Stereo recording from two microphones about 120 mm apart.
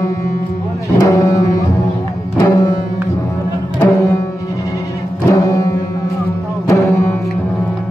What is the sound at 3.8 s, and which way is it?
Music, 25° left (ahead or behind).